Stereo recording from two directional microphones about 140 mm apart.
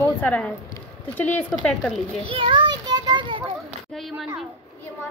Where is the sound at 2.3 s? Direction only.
35° right (ahead or behind).